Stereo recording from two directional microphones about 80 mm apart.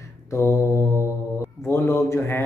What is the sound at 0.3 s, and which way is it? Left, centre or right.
Mantra, left.